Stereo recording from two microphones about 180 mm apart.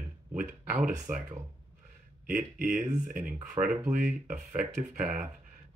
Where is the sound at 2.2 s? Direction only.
50° right (ahead or behind).